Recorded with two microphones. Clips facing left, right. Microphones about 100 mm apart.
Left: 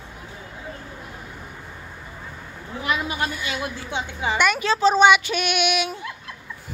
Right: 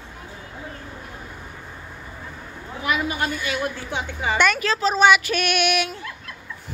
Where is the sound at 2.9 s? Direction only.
25° left (ahead or behind).